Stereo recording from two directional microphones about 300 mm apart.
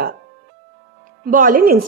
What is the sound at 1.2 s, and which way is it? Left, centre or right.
Speech, right.